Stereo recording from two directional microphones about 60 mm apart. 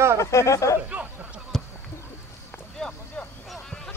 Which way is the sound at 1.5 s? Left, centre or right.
Centre.